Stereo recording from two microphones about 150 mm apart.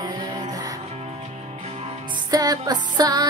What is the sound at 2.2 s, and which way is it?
Music, 25° right (ahead or behind).